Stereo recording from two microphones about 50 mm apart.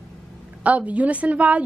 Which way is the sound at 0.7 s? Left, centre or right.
Right.